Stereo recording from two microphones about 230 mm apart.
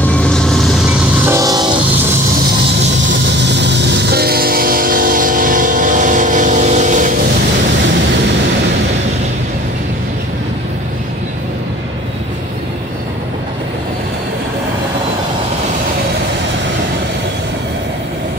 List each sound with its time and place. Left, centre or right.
0.0 s train: centre
1.2 s train: centre
3.5 s train: right